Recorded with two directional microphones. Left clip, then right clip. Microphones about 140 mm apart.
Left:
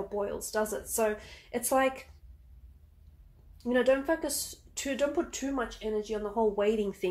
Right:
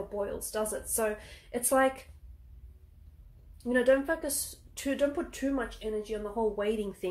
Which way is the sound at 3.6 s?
20° left (ahead or behind).